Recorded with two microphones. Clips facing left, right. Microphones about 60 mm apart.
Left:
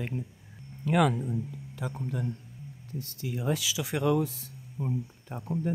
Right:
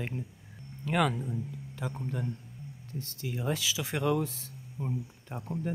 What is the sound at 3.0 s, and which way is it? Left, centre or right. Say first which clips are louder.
Speech: left 1 dB; right.